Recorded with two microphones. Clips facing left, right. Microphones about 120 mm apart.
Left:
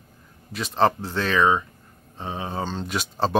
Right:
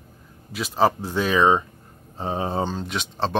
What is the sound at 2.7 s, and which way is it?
Speech, centre (ahead or behind).